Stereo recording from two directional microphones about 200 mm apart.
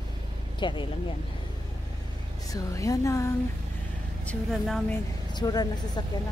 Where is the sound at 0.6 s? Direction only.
25° left (ahead or behind).